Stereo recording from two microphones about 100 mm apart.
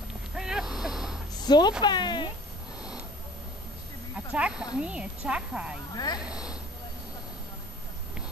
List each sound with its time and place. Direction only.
0.4 s a sound: 5° right (ahead or behind)
1.4 s a woman's voice: 45° left (ahead or behind)
4.3 s a woman's voice: 10° right (ahead or behind)